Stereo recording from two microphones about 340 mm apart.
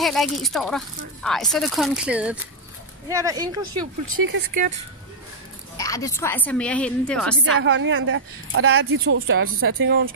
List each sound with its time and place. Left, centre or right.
0.0 s speech: centre
4.3 s speech: right
5.8 s speech: centre
7.6 s speech: right